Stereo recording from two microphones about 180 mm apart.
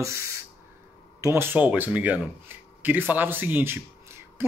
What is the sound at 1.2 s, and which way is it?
Speech, 15° right (ahead or behind).